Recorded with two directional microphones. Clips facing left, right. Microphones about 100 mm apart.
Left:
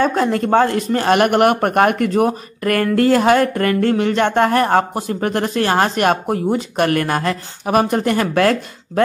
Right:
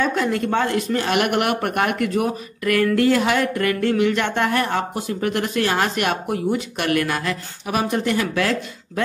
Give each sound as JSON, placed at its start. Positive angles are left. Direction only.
{"t": 0.0, "sound": "speech", "side_deg": 40}